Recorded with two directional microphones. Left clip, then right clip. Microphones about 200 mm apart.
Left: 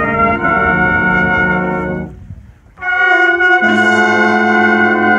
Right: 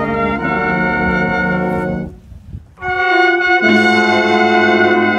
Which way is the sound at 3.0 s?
65° right (ahead or behind).